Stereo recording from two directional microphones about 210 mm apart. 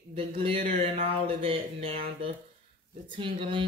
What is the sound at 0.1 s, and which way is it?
Speech, 25° right (ahead or behind).